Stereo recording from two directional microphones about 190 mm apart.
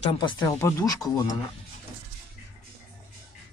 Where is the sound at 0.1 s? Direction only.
25° left (ahead or behind).